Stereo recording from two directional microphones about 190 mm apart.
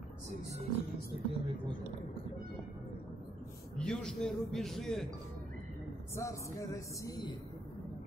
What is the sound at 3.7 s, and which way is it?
Speech, 5° left (ahead or behind).